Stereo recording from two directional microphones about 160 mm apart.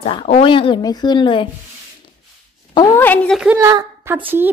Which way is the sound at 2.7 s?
20° left (ahead or behind).